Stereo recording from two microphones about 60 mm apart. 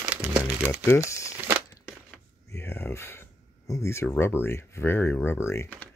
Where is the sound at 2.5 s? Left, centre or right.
Left.